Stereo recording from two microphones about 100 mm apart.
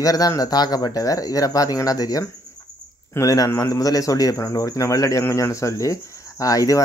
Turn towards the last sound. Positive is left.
turn(degrees=35)  # may be behind; listen again after turning